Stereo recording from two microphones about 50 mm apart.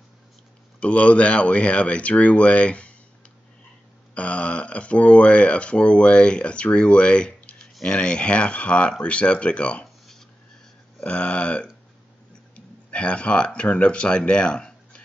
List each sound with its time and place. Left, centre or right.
0.7 s speech: left
4.1 s speech: left
11.0 s speech: left